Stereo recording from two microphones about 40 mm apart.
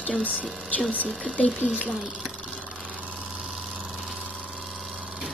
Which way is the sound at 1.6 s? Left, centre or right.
Left.